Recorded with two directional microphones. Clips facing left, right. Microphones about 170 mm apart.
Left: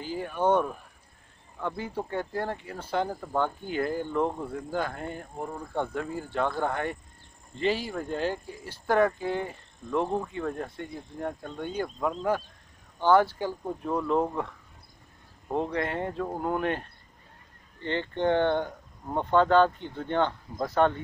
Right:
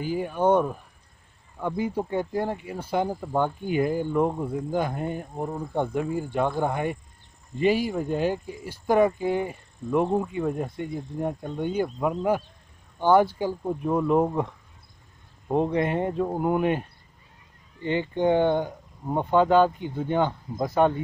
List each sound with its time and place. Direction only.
0.0 s speech: 15° right (ahead or behind)